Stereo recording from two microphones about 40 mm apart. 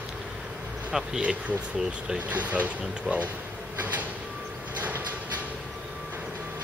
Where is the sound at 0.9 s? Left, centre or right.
Centre.